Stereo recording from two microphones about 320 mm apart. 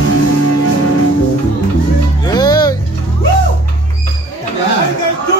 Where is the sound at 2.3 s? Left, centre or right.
Centre.